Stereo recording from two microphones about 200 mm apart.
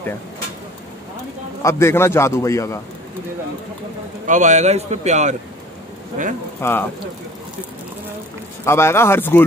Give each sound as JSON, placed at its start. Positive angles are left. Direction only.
{"t": 1.6, "sound": "a man's voice", "side_deg": 15}
{"t": 4.3, "sound": "a man's voice", "side_deg": -35}
{"t": 6.6, "sound": "a man's voice", "side_deg": 10}
{"t": 8.6, "sound": "a man's voice", "side_deg": 10}